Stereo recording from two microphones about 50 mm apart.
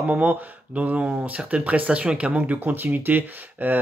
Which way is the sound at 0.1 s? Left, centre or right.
Right.